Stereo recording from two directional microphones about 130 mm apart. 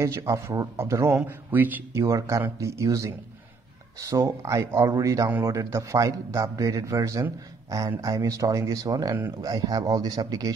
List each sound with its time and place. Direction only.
0.0 s speech: 20° right (ahead or behind)